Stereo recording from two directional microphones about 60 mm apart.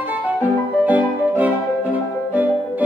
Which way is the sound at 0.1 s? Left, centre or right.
Right.